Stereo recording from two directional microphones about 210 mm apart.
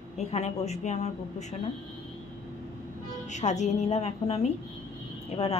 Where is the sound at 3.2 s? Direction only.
35° left (ahead or behind).